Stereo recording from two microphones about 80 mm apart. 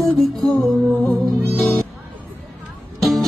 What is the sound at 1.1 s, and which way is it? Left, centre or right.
Music, left.